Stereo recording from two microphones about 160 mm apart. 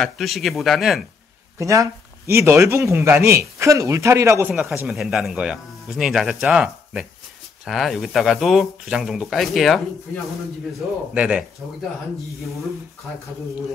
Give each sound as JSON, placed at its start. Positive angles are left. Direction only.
{"t": 0.0, "sound": "speech", "side_deg": 0}
{"t": 1.6, "sound": "speech", "side_deg": -20}
{"t": 11.1, "sound": "speech", "side_deg": -5}